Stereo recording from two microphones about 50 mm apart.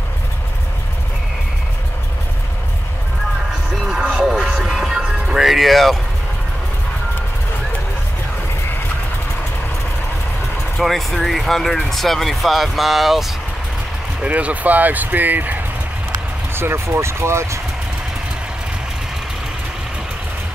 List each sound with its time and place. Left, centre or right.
3.7 s vehicle: centre
4.2 s music: centre
10.8 s speech: centre
14.2 s speech: right
16.5 s speech: right